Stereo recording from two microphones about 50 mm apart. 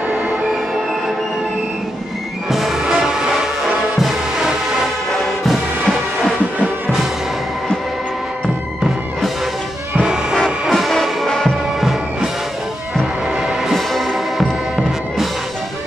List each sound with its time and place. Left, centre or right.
2.5 s music: centre
9.9 s music: centre
10.3 s music: centre
11.2 s music: centre
13.7 s music: centre